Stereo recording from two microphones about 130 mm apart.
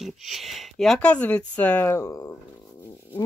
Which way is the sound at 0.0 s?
Centre (ahead or behind).